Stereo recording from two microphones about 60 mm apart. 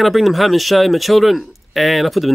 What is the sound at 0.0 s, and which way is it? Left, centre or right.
Speech, centre.